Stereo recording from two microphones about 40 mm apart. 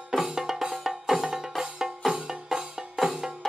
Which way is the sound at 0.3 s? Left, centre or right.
Centre.